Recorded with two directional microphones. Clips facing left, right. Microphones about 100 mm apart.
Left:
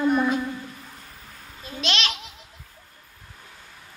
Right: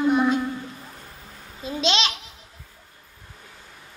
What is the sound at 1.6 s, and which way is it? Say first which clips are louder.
Babbling: right 5 dB; 25° right (ahead or behind).